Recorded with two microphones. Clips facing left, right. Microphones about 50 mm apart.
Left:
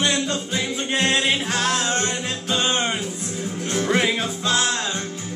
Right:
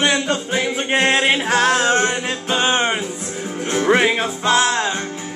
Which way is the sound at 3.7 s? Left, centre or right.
Right.